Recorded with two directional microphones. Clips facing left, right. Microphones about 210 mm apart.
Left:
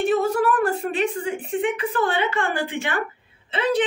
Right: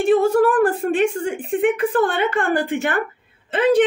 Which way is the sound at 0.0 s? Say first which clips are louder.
Right 5 dB; 45° right (ahead or behind).